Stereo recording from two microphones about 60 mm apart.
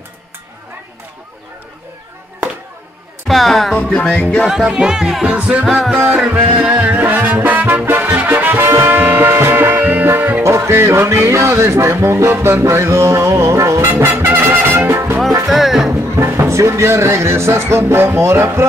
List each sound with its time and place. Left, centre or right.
3.3 s speech: centre
3.7 s music: centre
4.5 s speech: centre
5.3 s music: right
8.6 s music: right
8.9 s music: right
10.4 s speech: right
15.4 s speech: centre
15.9 s speech: right